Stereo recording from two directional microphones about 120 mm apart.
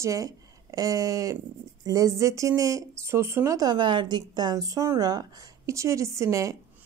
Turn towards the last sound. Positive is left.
turn(degrees=-25)  # may be behind; listen again after turning